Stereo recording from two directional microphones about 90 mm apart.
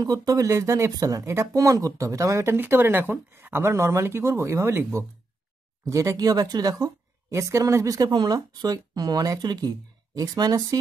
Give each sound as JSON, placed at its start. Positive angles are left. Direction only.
{"t": 0.0, "sound": "a woman's voice", "side_deg": -45}